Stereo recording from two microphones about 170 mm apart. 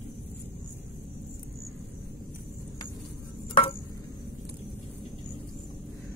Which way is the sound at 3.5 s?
40° left (ahead or behind).